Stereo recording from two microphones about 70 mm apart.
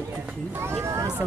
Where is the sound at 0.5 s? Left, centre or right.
Right.